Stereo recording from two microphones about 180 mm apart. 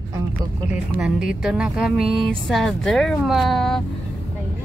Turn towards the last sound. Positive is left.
turn(degrees=0)  # may be behind; listen again after turning